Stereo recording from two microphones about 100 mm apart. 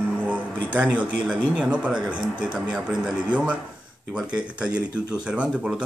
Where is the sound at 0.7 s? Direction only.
15° right (ahead or behind).